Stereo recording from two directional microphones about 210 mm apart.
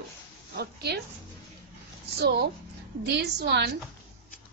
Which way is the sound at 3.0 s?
55° right (ahead or behind).